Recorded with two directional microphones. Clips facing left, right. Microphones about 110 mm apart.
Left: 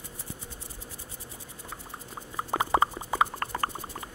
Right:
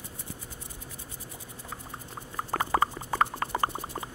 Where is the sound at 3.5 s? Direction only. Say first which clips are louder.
Right 3 dB; 20° right (ahead or behind).